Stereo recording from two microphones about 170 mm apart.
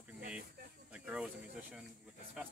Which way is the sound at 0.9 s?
5° right (ahead or behind).